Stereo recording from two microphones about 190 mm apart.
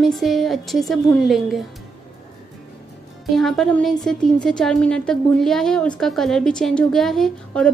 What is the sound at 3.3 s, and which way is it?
Speech, centre (ahead or behind).